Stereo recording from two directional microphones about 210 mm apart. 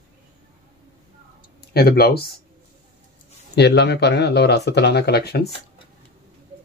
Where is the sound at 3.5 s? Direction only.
50° left (ahead or behind).